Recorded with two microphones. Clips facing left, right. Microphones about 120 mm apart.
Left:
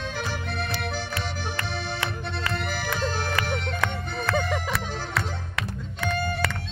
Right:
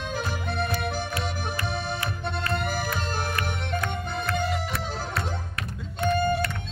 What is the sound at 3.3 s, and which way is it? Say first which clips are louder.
Music: left 2 dB; 90° left.